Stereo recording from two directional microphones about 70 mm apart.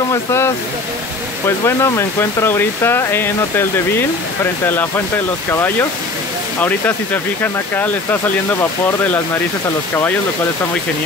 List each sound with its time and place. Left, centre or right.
0.1 s speech: left
1.6 s speech: left
4.6 s speech: left
7.4 s speech: left